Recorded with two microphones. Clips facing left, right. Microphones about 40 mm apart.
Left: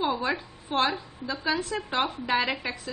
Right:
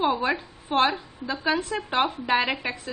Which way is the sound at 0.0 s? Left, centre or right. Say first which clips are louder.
Right 3 dB; centre.